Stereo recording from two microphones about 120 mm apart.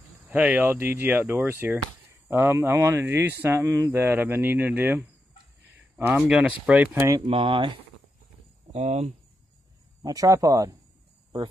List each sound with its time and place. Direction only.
0.3 s speech: 15° right (ahead or behind)
7.2 s speech: 50° right (ahead or behind)
8.7 s speech: 65° right (ahead or behind)
10.0 s speech: 30° right (ahead or behind)